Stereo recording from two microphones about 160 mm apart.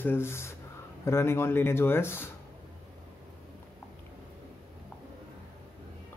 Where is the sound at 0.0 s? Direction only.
15° left (ahead or behind).